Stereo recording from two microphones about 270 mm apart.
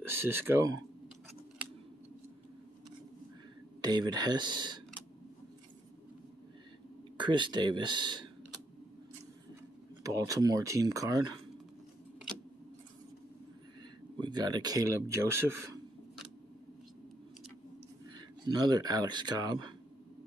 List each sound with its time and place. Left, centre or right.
0.1 s speech: centre
3.8 s speech: centre
7.2 s speech: centre
10.0 s speech: centre
14.2 s speech: centre
18.1 s speech: centre